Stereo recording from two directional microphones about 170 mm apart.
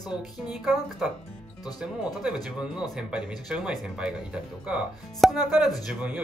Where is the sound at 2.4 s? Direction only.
5° right (ahead or behind).